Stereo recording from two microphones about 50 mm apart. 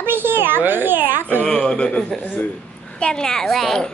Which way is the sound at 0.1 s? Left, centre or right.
Right.